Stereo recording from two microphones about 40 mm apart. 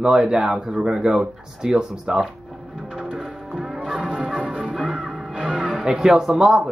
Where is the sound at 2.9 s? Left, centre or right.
Centre.